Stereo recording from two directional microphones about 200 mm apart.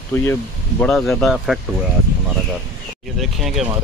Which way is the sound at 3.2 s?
Centre (ahead or behind).